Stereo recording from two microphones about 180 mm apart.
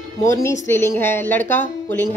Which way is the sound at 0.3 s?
15° left (ahead or behind).